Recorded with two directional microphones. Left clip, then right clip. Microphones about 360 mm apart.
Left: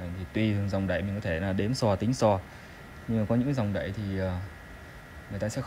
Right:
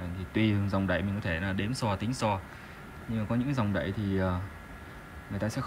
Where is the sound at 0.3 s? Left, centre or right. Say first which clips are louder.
Even; centre.